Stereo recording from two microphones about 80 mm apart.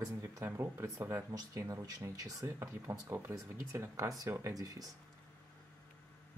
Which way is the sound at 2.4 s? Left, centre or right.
Right.